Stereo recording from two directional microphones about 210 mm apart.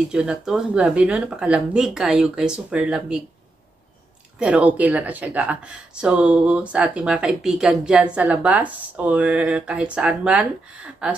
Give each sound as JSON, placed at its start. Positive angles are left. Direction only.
{"t": 0.1, "sound": "speech", "side_deg": -5}
{"t": 4.4, "sound": "speech", "side_deg": -5}